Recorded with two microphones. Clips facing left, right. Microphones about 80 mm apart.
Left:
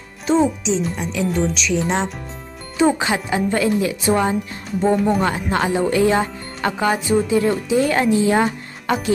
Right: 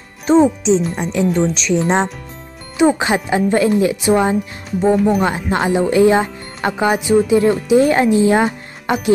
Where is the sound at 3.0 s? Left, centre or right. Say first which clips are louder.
Right 4 dB; right.